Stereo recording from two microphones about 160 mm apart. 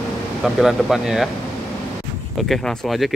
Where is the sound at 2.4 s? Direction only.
Centre (ahead or behind).